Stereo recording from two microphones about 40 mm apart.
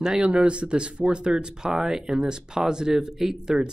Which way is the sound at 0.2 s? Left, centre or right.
Right.